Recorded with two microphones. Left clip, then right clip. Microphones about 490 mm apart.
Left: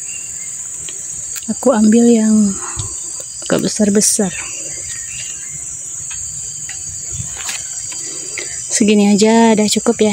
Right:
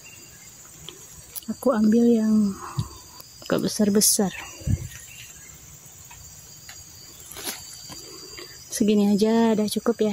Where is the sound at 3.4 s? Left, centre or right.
Right.